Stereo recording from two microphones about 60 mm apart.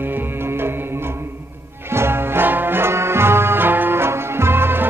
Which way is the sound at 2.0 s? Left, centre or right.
Right.